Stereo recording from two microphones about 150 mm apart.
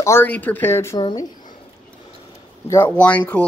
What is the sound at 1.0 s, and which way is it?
Speech, 30° left (ahead or behind).